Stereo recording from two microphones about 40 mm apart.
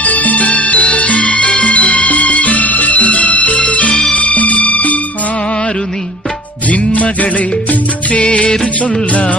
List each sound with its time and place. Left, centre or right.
0.0 s music: left
6.7 s music: left